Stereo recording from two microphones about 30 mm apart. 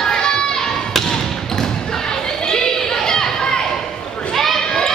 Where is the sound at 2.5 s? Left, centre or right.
Centre.